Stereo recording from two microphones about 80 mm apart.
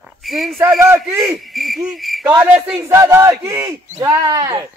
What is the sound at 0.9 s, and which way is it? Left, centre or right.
Speech, right.